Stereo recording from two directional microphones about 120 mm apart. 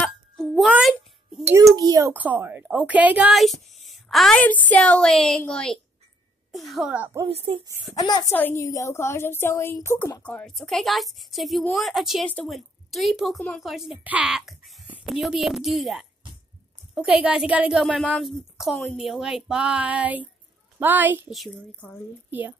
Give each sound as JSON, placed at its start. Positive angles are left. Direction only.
{"t": 0.0, "sound": "a sound", "side_deg": 5}
{"t": 1.5, "sound": "a child's voice", "side_deg": -30}
{"t": 2.1, "sound": "a sound", "side_deg": -15}
{"t": 3.3, "sound": "speech", "side_deg": 0}
{"t": 4.4, "sound": "a woman's voice", "side_deg": 15}
{"t": 7.2, "sound": "speech", "side_deg": -50}
{"t": 7.9, "sound": "a woman's voice", "side_deg": 35}
{"t": 8.3, "sound": "a woman's voice", "side_deg": 20}
{"t": 10.2, "sound": "a woman's voice", "side_deg": 5}
{"t": 18.9, "sound": "a sound", "side_deg": 0}
{"t": 21.7, "sound": "speech", "side_deg": 15}
{"t": 22.3, "sound": "a sound", "side_deg": -15}